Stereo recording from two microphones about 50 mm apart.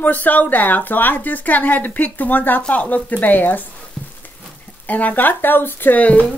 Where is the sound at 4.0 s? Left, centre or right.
Left.